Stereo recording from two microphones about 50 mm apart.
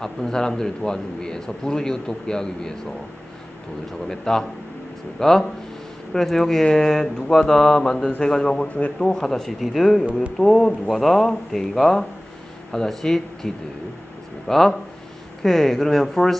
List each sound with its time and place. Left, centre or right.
0.0 s a man's voice: centre
4.1 s a man's voice: centre
8.6 s speech: left
8.9 s a man's voice: centre
14.5 s a man's voice: centre